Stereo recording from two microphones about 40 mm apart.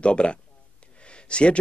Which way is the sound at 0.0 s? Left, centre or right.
Left.